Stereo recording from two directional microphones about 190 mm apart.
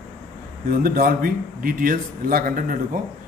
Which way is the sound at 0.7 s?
50° right (ahead or behind).